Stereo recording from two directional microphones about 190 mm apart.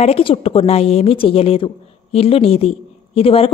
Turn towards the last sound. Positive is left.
turn(degrees=30)  # may be behind; listen again after turning